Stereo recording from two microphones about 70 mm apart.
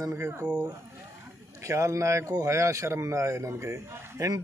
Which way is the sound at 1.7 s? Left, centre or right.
Right.